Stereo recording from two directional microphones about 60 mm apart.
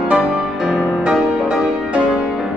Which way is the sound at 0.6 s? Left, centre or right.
Centre.